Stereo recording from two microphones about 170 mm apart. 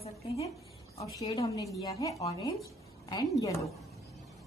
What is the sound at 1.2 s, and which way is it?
A woman's voice, 20° left (ahead or behind).